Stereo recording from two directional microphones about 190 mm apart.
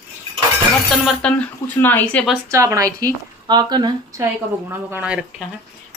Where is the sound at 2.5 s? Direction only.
15° right (ahead or behind).